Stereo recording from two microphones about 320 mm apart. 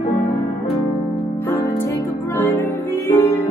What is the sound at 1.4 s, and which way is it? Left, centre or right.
Music, centre.